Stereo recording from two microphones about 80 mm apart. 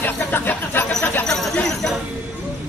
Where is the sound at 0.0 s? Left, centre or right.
Left.